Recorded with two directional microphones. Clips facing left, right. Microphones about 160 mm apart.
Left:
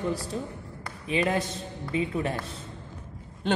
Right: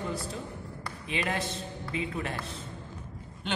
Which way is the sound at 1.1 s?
35° left (ahead or behind).